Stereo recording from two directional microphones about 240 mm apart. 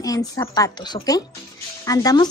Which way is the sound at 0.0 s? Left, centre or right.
Centre.